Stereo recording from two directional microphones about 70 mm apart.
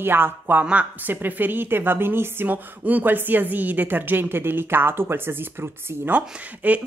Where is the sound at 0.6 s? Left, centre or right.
Centre.